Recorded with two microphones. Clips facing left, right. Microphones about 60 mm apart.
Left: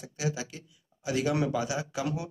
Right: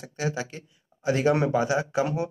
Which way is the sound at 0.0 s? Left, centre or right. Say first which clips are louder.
Right 4 dB; right.